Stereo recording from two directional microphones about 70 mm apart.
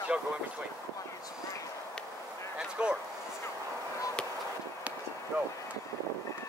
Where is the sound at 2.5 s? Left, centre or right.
Centre.